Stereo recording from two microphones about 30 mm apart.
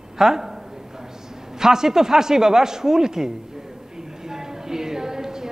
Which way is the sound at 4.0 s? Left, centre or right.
Centre.